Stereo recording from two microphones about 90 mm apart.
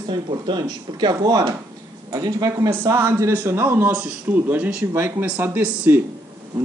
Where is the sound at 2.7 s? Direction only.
25° right (ahead or behind).